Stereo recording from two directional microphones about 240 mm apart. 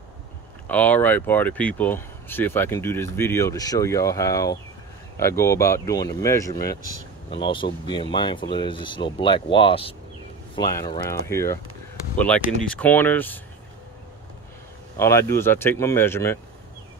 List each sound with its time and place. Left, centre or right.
0.7 s speech: centre
12.6 s speech: centre
15.0 s speech: centre